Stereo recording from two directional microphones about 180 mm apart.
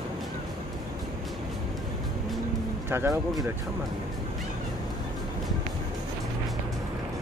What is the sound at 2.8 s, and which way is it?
Speech, 15° right (ahead or behind).